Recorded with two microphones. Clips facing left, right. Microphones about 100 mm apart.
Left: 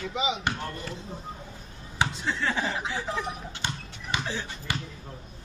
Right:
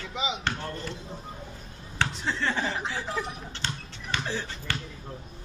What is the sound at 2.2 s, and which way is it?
Speech, 5° left (ahead or behind).